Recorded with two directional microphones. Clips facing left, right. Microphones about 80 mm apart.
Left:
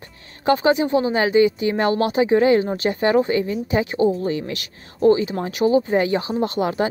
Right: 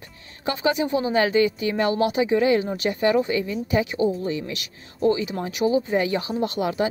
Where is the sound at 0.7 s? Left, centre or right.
Left.